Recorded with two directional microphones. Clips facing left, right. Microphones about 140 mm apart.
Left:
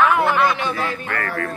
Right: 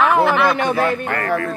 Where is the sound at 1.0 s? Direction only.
25° right (ahead or behind).